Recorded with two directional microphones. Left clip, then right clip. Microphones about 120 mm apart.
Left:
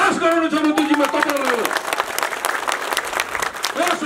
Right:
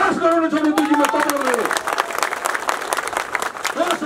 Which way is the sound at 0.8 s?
30° right (ahead or behind).